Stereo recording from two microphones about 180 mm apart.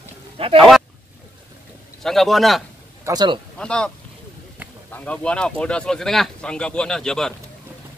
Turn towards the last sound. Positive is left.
turn(degrees=5)  # may be behind; listen again after turning